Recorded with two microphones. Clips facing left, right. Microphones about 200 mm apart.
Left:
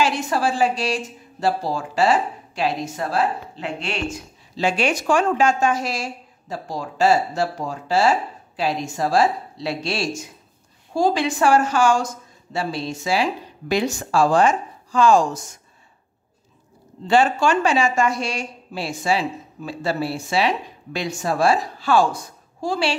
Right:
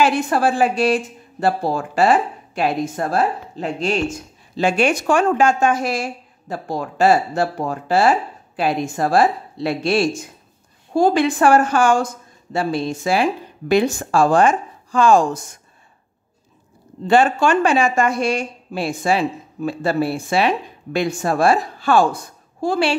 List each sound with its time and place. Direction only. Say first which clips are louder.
0.0 s a woman's voice: right 4 dB; 55° right (ahead or behind); by 4.0 s 40° right (ahead or behind)
4.6 s a woman's voice: right 4 dB; 50° right (ahead or behind)
17.1 s a woman's voice: right 2 dB; 55° right (ahead or behind)